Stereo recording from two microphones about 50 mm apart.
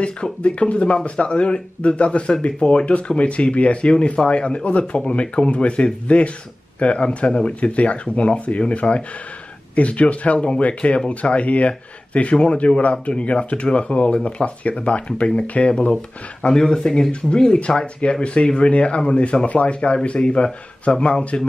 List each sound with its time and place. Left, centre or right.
0.0 s speech: left
16.4 s speech: centre